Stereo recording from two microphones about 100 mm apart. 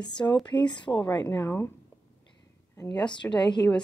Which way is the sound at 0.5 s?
50° left (ahead or behind).